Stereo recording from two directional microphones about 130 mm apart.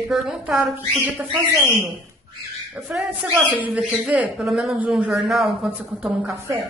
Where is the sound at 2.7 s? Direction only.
10° right (ahead or behind).